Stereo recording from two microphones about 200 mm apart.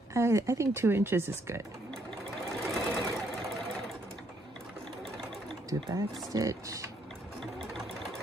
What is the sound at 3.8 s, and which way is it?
Sewing machine, centre (ahead or behind).